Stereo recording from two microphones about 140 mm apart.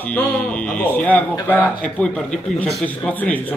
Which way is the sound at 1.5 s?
10° left (ahead or behind).